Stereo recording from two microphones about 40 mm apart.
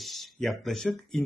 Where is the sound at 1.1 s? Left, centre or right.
Centre.